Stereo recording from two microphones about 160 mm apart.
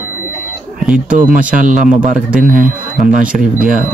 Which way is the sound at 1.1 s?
55° right (ahead or behind).